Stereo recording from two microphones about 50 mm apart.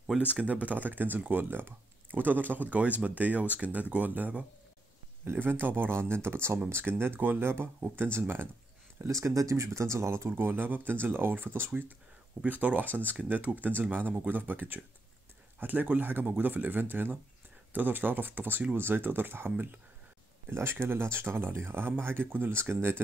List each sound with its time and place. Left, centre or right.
0.7 s speech: right
5.2 s speech: right
9.0 s speech: right
10.3 s speech: right
12.4 s speech: right